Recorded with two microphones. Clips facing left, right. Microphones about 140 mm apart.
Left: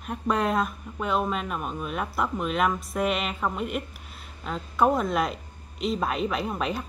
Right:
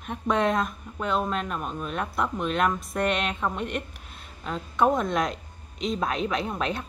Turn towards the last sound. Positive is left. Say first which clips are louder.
# even
turn(degrees=5)  # may be behind; listen again after turning